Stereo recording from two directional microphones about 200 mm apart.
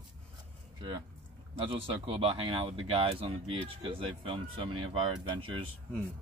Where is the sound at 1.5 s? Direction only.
25° right (ahead or behind).